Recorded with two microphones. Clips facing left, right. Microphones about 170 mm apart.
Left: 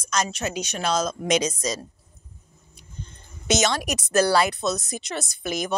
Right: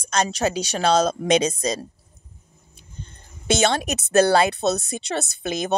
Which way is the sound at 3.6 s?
25° right (ahead or behind).